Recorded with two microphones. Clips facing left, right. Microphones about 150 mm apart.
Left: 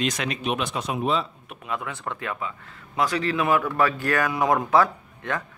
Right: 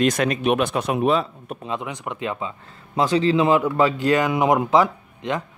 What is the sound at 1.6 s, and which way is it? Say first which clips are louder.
Speech: right 2 dB; 20° right (ahead or behind).